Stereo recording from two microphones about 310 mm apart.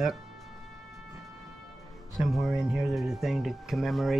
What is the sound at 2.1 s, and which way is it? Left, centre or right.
Speech, centre.